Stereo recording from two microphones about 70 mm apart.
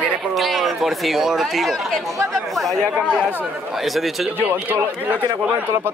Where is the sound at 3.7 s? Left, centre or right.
Centre.